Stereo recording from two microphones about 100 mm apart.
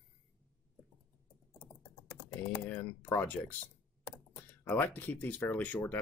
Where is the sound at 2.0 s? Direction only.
20° left (ahead or behind).